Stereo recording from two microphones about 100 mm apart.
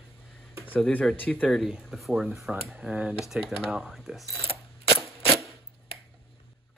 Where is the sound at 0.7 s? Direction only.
10° left (ahead or behind).